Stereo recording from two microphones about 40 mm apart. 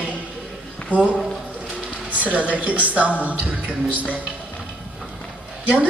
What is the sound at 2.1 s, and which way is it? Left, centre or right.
A woman's voice, right.